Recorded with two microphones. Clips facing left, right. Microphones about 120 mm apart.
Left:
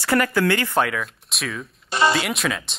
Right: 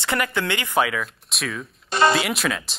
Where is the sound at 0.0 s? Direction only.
20° right (ahead or behind).